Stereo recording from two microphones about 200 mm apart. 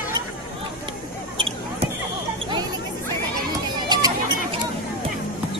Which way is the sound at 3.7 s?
20° right (ahead or behind).